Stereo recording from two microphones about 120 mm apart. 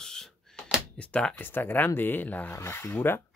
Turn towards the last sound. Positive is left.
turn(degrees=20)  # may be behind; listen again after turning